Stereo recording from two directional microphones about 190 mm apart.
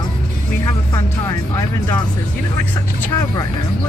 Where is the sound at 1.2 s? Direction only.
15° left (ahead or behind).